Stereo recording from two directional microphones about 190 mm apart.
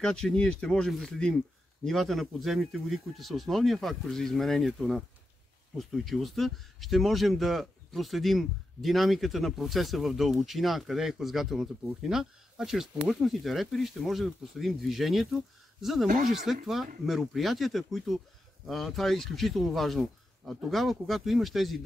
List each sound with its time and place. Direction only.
0.0 s speech: 5° left (ahead or behind)
16.1 s speech: 45° right (ahead or behind)
16.6 s speech: centre (ahead or behind)